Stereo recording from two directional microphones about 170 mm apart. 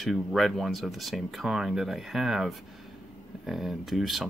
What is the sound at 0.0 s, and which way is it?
Speech, centre (ahead or behind).